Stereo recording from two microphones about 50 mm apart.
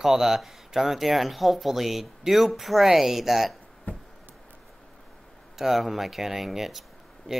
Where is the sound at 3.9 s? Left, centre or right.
Left.